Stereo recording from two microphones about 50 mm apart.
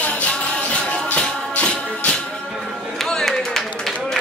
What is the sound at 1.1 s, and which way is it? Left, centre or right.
Music, left.